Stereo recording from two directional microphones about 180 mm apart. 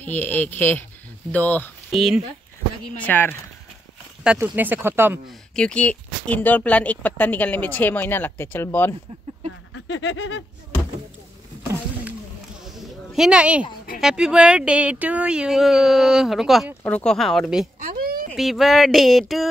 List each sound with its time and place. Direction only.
0.0 s speech: 10° left (ahead or behind)
3.0 s speech: 10° left (ahead or behind)
4.2 s speech: 10° right (ahead or behind)
5.6 s speech: 5° left (ahead or behind)
9.8 s a sound: 90° left
12.7 s a sound: centre (ahead or behind)
14.0 s speech: 5° right (ahead or behind)
17.8 s a sound: 55° right (ahead or behind)
18.3 s speech: centre (ahead or behind)